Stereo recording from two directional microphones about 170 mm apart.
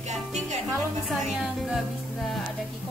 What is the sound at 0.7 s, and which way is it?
Speech, centre (ahead or behind).